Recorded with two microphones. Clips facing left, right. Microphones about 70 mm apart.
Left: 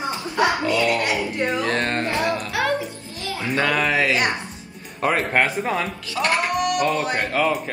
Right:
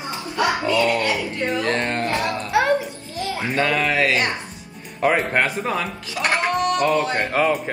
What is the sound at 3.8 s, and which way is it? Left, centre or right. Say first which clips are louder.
Speech: even; left.